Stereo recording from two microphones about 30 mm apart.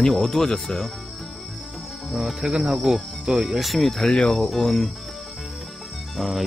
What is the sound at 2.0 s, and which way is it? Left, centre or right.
Cricket, centre.